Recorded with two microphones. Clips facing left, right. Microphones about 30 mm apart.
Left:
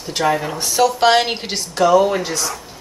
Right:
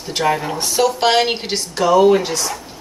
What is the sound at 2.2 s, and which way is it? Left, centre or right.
Speech, right.